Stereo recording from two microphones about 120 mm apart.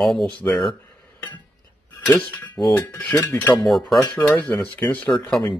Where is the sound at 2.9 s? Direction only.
15° left (ahead or behind).